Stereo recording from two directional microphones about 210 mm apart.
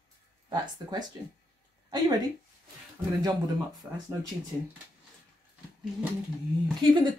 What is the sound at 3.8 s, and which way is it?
Speech, 10° right (ahead or behind).